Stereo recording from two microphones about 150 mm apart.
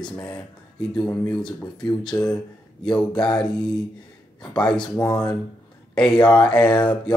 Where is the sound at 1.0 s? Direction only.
5° left (ahead or behind).